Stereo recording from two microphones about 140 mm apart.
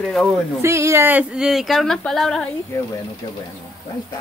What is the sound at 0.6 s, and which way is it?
Speech, 20° right (ahead or behind).